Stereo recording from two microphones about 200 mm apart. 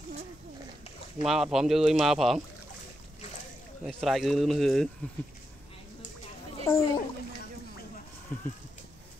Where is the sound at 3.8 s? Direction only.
Centre (ahead or behind).